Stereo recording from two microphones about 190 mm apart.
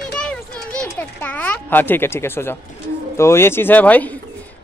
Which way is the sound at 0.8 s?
5° left (ahead or behind).